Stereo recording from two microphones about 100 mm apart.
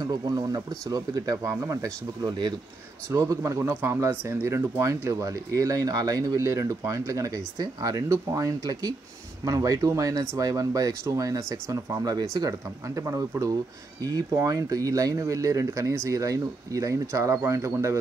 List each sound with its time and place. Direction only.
0.0 s speech: 40° right (ahead or behind)
2.2 s speech: 50° right (ahead or behind)
3.2 s speech: 35° right (ahead or behind)
3.8 s speech: 25° right (ahead or behind); by 8.0 s 40° right (ahead or behind)
8.1 s speech: 30° right (ahead or behind)